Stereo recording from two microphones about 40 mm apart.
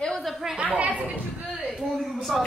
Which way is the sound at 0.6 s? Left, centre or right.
Right.